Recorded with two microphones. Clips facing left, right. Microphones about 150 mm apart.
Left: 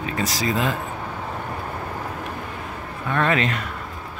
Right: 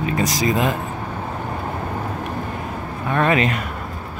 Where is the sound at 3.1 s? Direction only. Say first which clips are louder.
Right 3 dB; 15° right (ahead or behind).